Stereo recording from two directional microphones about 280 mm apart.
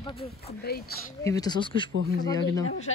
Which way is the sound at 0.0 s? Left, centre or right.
Left.